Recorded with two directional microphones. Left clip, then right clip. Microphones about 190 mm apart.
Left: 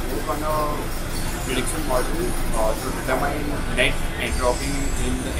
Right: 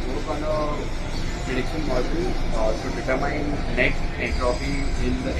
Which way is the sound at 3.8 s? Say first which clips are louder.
Left 1 dB; centre (ahead or behind).